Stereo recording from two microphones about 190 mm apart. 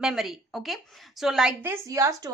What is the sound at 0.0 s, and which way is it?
A woman's voice, centre (ahead or behind).